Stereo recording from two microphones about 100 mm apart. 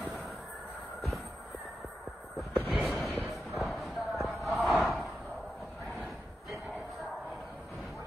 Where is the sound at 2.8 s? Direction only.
Centre (ahead or behind).